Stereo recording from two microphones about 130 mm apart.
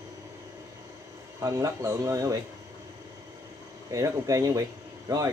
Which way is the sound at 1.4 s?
25° right (ahead or behind).